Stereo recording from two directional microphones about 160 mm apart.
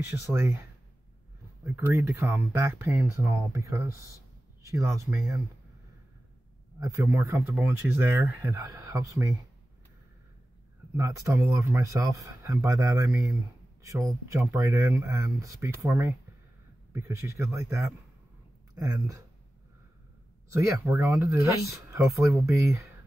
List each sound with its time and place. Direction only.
0.1 s speech: 15° right (ahead or behind)
1.9 s speech: 15° right (ahead or behind)
6.8 s speech: 20° right (ahead or behind)
11.0 s speech: 20° right (ahead or behind)
20.4 s speech: 20° right (ahead or behind)